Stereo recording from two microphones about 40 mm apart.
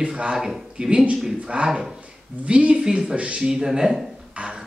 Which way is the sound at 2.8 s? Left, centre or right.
Centre.